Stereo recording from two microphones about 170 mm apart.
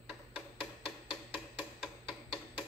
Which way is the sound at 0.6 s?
30° left (ahead or behind).